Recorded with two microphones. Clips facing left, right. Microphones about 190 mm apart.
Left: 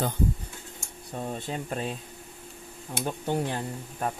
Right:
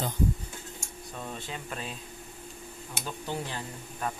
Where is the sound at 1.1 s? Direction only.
40° left (ahead or behind).